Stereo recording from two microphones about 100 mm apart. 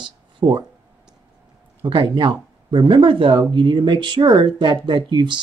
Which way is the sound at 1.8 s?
50° right (ahead or behind).